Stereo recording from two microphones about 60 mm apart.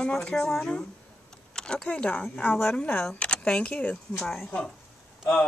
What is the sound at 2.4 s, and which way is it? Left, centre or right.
Speech, left.